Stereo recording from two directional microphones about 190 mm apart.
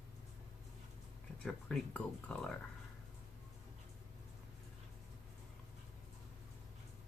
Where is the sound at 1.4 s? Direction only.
5° left (ahead or behind).